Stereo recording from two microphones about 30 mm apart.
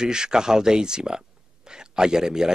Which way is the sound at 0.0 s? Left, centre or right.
Right.